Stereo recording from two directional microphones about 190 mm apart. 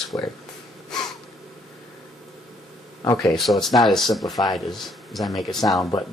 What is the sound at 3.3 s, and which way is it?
Speech, centre (ahead or behind).